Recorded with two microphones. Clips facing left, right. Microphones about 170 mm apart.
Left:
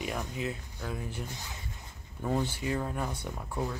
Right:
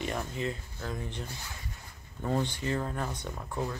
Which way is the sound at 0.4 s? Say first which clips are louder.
Right 1 dB; 5° left (ahead or behind).